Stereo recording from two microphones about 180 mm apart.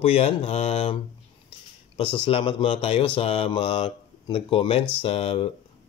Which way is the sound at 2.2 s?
30° left (ahead or behind).